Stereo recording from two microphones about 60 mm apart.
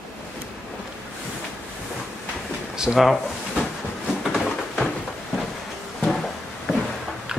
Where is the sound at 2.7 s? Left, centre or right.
Centre.